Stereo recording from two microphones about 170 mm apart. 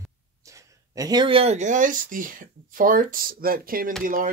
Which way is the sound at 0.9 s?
25° right (ahead or behind).